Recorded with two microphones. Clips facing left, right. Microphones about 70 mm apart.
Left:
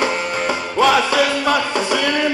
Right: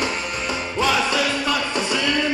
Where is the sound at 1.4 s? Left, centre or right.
Left.